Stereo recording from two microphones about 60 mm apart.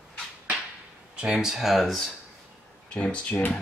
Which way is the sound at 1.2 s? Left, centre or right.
Centre.